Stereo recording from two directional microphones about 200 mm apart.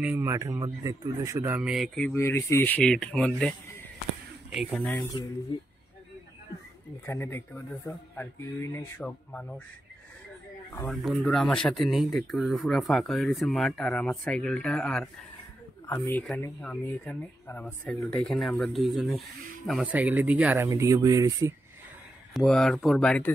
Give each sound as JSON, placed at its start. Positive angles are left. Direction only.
{"t": 0.0, "sound": "speech", "side_deg": -10}
{"t": 4.5, "sound": "speech", "side_deg": -5}
{"t": 5.5, "sound": "speech", "side_deg": 25}
{"t": 7.1, "sound": "speech", "side_deg": 10}
{"t": 10.9, "sound": "speech", "side_deg": 0}
{"t": 22.3, "sound": "speech", "side_deg": 0}